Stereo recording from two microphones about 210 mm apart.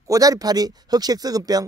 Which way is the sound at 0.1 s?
15° right (ahead or behind).